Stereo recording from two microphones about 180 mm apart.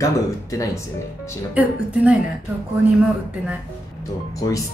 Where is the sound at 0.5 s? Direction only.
20° left (ahead or behind).